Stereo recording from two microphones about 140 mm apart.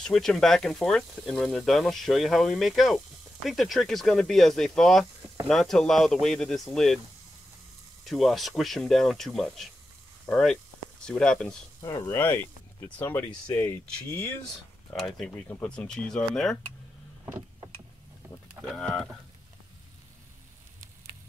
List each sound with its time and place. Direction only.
0.0 s speech: 5° left (ahead or behind)
8.0 s speech: centre (ahead or behind)
11.8 s speech: 25° left (ahead or behind)
14.9 s speech: centre (ahead or behind)
18.7 s speech: 5° left (ahead or behind)